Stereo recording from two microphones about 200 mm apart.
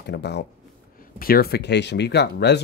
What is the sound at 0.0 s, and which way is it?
Speech, 55° left (ahead or behind).